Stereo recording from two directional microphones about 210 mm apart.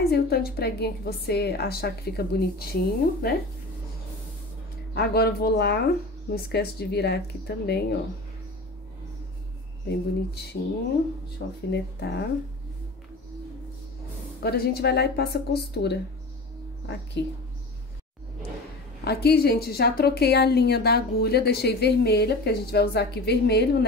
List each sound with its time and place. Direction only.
0.1 s a woman's voice: 50° left (ahead or behind)
4.9 s a woman's voice: 50° left (ahead or behind)
9.8 s a woman's voice: 50° left (ahead or behind)
14.4 s a woman's voice: 50° left (ahead or behind)
19.0 s a woman's voice: 50° left (ahead or behind)